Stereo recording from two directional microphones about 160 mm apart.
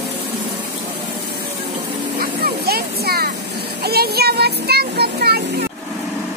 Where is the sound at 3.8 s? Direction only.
80° right.